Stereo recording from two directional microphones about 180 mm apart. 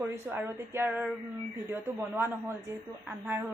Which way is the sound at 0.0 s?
15° right (ahead or behind).